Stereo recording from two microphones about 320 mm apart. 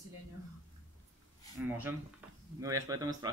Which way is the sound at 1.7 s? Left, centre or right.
Centre.